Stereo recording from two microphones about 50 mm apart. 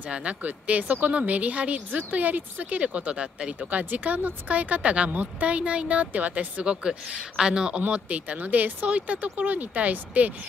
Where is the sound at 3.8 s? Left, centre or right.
Right; by 7.8 s centre.